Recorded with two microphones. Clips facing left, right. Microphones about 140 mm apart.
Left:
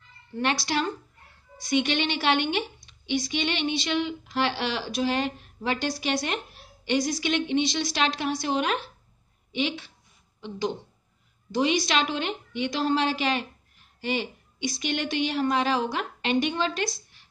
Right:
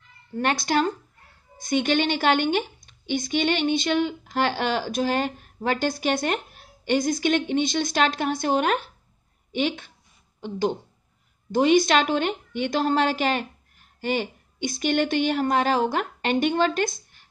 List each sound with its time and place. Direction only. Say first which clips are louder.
0.4 s a woman's voice: right 4 dB; 45° right (ahead or behind)